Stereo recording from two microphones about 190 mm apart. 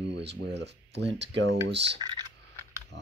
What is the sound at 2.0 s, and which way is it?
Speech, 25° right (ahead or behind).